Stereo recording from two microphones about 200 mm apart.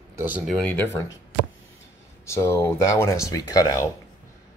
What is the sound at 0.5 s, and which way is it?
Speech, 10° left (ahead or behind).